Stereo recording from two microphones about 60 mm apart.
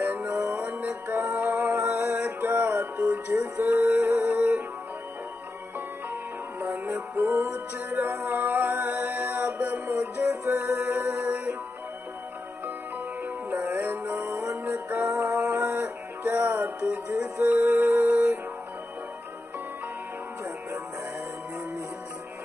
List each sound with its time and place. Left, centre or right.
0.0 s music: right
0.8 s music: right
2.0 s music: right
2.2 s music: right
3.6 s music: right
6.7 s music: right
8.3 s music: right
10.9 s music: right
13.2 s music: right
14.4 s music: right
15.7 s music: right